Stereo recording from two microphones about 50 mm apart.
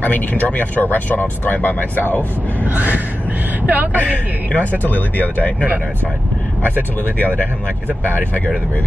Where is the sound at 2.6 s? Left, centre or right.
Right.